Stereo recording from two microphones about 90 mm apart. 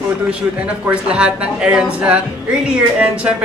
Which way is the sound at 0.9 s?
10° right (ahead or behind).